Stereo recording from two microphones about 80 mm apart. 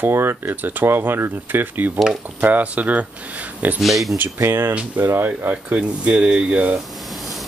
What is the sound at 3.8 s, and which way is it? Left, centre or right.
Speech, centre.